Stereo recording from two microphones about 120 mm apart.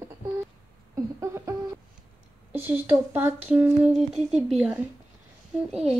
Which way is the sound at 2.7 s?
15° right (ahead or behind).